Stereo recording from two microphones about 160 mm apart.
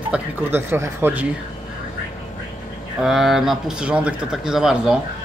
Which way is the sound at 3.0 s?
Centre (ahead or behind).